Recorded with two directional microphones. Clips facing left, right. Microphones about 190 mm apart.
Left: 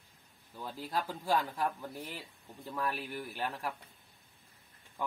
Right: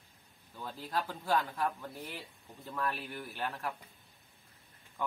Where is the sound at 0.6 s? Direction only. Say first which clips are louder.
Even; 10° left (ahead or behind).